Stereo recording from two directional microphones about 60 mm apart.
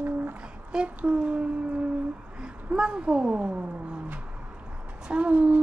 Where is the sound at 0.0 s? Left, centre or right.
Right.